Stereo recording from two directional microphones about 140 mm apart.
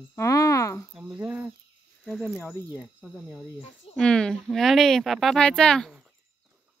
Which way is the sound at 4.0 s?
5° left (ahead or behind).